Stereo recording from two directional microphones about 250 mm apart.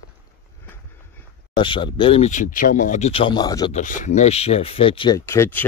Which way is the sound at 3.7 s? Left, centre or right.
Left.